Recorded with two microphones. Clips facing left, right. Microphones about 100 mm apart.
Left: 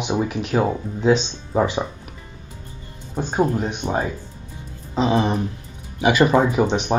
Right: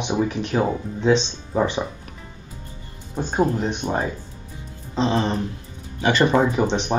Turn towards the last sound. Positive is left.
turn(degrees=5)  # may be behind; listen again after turning